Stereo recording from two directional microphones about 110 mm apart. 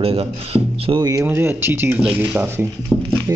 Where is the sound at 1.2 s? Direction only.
20° right (ahead or behind).